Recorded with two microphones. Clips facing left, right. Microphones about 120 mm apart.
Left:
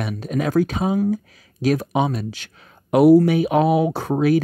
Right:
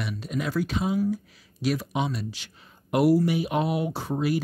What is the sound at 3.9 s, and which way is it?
Speech, 60° left (ahead or behind).